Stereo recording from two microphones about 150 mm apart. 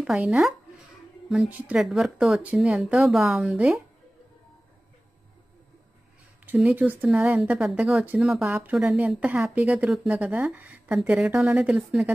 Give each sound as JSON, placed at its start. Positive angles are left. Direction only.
{"t": 0.0, "sound": "speech", "side_deg": -5}
{"t": 6.4, "sound": "speech", "side_deg": -10}